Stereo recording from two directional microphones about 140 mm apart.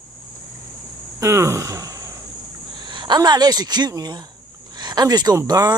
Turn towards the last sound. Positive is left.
turn(degrees=-30)  # may be behind; listen again after turning